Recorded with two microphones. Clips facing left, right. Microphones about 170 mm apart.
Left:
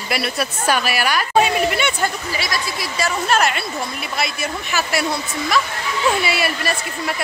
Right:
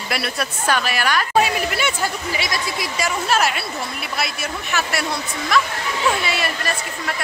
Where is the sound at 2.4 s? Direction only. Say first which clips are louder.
Left 1 dB; 20° right (ahead or behind).